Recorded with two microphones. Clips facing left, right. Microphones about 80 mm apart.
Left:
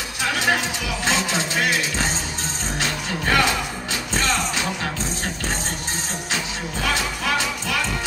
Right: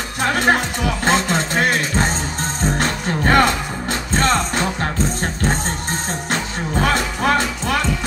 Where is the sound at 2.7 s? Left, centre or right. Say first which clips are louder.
Right 5 dB; right.